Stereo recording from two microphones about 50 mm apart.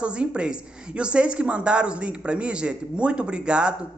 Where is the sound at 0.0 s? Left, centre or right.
Right.